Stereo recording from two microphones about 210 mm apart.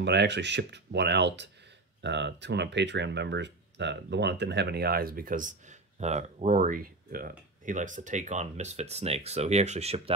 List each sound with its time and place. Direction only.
0.0 s speech: 55° right (ahead or behind); by 10.1 s 30° right (ahead or behind)